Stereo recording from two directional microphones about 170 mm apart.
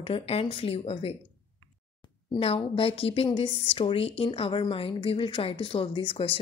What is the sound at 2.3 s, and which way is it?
A woman's voice, 35° left (ahead or behind).